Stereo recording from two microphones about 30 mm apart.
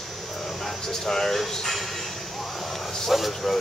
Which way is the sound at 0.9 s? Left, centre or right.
Centre.